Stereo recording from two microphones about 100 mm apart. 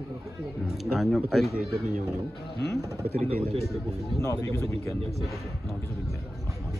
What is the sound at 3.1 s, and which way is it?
Speech, 90° right.